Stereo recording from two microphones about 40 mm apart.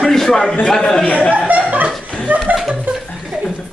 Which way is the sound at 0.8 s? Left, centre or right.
Left.